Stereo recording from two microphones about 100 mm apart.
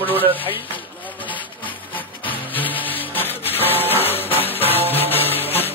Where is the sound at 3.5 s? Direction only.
20° right (ahead or behind).